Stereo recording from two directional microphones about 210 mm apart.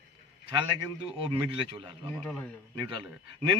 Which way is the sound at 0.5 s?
25° right (ahead or behind).